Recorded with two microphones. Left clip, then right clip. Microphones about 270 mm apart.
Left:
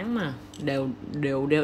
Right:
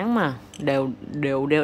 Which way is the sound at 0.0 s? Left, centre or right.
Centre.